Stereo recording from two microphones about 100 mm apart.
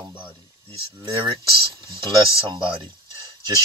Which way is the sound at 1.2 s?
55° right (ahead or behind).